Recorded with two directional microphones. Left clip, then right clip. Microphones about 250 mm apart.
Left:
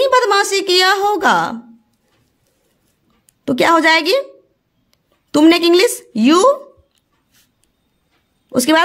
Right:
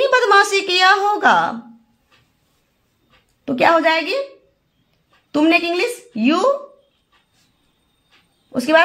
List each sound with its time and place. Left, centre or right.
0.0 s a woman's voice: left
3.4 s a woman's voice: left
5.3 s a woman's voice: left
8.5 s speech: left